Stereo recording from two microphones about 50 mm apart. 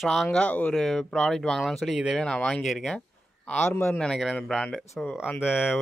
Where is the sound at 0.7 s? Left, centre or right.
Centre.